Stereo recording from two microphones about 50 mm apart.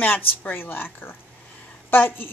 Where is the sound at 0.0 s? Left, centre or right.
Left.